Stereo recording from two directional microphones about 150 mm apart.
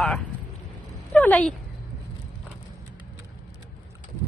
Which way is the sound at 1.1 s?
10° left (ahead or behind).